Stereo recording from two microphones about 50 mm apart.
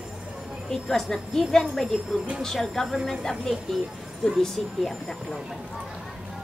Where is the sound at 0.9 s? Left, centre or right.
Centre.